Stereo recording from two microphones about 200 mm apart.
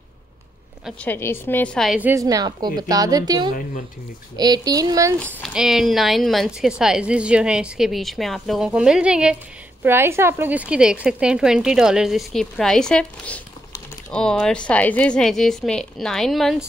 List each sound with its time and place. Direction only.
1.0 s a woman's voice: 10° left (ahead or behind); by 5.1 s 15° right (ahead or behind)
5.2 s speech: centre (ahead or behind)